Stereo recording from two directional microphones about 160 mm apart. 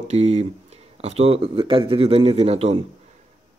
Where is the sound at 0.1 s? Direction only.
45° right (ahead or behind).